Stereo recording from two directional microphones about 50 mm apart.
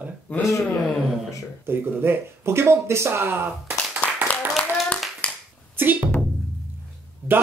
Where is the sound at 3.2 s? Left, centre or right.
Right.